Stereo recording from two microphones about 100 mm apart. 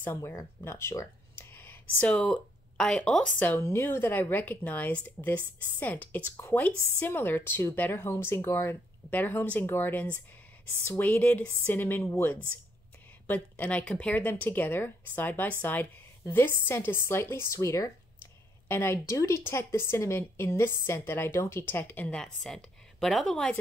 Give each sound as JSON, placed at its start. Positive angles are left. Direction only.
{"t": 0.0, "sound": "speech", "side_deg": 25}
{"t": 3.5, "sound": "speech", "side_deg": 25}
{"t": 13.3, "sound": "speech", "side_deg": 15}